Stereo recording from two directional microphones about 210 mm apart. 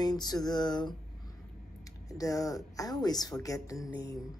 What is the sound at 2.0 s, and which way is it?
Speech, 15° left (ahead or behind).